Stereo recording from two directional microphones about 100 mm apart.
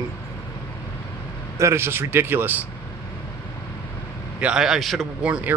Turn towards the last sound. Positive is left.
turn(degrees=-15)  # may be behind; listen again after turning